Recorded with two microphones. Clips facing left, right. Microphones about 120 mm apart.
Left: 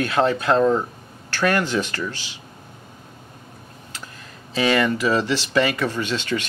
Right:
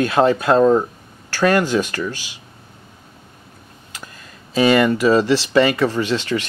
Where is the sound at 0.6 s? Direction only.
20° right (ahead or behind).